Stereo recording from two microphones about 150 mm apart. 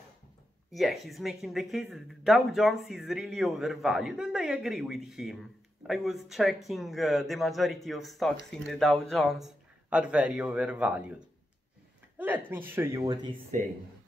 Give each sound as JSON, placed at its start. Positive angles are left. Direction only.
{"t": 0.7, "sound": "speech", "side_deg": 0}
{"t": 13.0, "sound": "speech", "side_deg": -30}